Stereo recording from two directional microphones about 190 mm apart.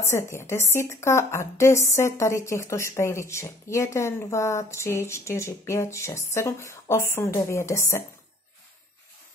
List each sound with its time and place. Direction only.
0.0 s a woman's voice: 15° left (ahead or behind)